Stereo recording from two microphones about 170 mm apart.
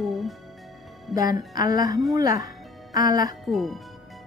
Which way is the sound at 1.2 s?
20° right (ahead or behind).